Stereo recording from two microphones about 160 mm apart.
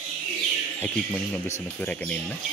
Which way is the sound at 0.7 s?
10° left (ahead or behind).